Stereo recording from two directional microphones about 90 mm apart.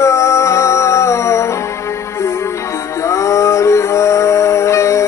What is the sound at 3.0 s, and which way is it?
Music, 35° left (ahead or behind).